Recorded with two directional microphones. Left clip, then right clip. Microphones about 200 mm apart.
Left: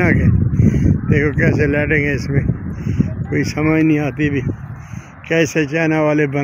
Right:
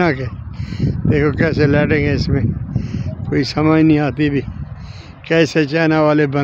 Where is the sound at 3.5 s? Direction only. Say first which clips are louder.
Right 2 dB; 25° right (ahead or behind).